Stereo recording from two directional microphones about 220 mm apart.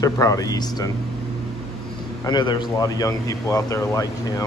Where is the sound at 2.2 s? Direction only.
20° left (ahead or behind).